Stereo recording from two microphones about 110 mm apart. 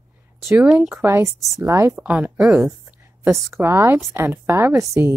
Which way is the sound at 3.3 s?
25° right (ahead or behind).